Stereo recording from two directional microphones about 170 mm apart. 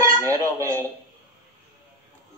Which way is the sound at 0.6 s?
15° right (ahead or behind).